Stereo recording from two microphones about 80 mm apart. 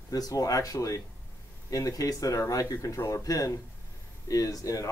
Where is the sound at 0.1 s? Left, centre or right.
Left.